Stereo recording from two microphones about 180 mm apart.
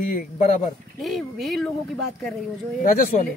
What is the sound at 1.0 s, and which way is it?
Speech, centre (ahead or behind).